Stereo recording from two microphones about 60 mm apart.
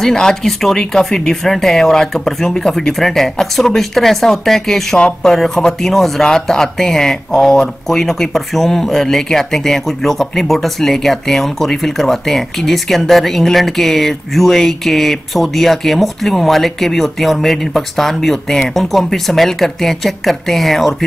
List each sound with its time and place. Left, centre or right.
0.0 s speech: centre
4.9 s speech: centre
5.3 s speech: centre